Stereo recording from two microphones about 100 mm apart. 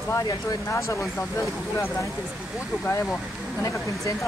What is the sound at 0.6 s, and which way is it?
Speech, 30° left (ahead or behind).